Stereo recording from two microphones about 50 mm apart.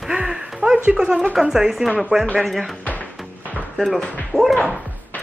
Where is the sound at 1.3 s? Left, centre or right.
Centre.